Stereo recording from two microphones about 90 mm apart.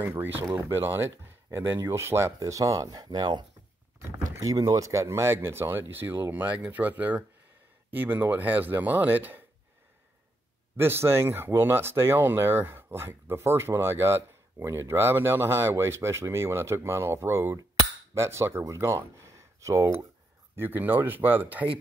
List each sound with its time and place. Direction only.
0.0 s speech: 20° right (ahead or behind); by 3.4 s 55° right (ahead or behind)
4.4 s speech: 45° right (ahead or behind); by 9.4 s 20° right (ahead or behind)
10.8 s speech: 25° right (ahead or behind)